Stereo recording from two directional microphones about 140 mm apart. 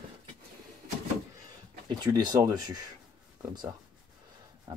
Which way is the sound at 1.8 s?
30° right (ahead or behind).